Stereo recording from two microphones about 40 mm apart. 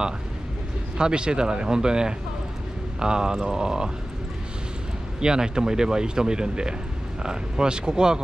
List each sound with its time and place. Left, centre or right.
0.9 s speech: right
5.2 s speech: centre